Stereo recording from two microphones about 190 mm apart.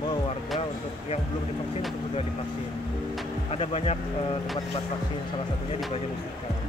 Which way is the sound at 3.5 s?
30° left (ahead or behind).